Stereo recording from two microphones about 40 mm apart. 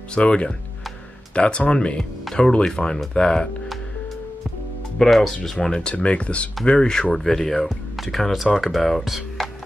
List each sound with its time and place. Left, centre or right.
0.1 s speech: left
4.9 s speech: centre
5.9 s speech: left; by 9.0 s centre
9.0 s music: centre